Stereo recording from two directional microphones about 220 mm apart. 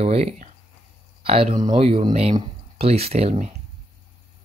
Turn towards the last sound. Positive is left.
turn(degrees=-30)  # may be behind; listen again after turning